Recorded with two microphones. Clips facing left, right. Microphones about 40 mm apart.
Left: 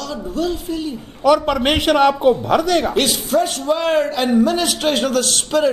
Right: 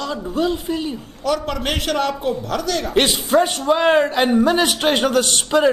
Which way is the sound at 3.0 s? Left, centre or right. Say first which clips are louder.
Right 1 dB; right.